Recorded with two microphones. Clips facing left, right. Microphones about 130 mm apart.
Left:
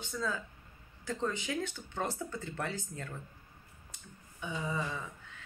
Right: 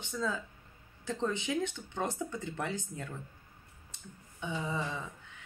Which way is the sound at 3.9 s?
25° right (ahead or behind).